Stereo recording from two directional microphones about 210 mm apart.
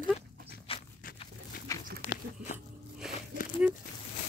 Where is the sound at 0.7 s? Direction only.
25° left (ahead or behind).